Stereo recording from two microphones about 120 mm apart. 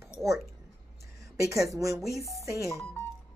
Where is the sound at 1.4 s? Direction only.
25° right (ahead or behind).